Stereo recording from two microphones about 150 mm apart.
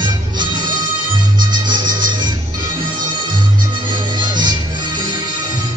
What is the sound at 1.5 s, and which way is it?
Music, 30° right (ahead or behind).